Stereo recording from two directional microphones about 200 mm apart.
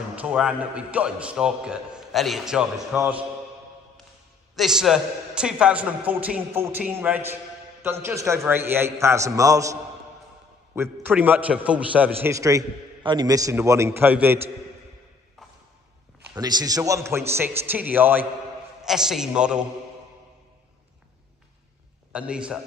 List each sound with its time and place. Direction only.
0.1 s a man's voice: 5° right (ahead or behind)
4.6 s a man's voice: centre (ahead or behind)
16.3 s a man's voice: 20° right (ahead or behind)
22.1 s a man's voice: 5° right (ahead or behind)